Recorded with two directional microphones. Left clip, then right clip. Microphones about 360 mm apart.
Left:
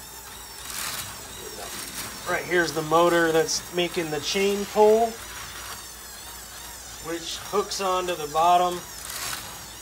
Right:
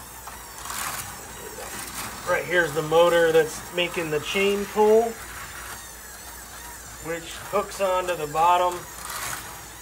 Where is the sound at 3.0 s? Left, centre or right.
Left.